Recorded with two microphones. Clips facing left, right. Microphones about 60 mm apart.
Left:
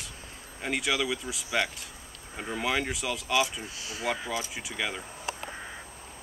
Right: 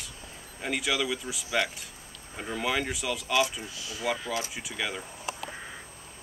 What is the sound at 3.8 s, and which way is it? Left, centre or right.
Speech, left.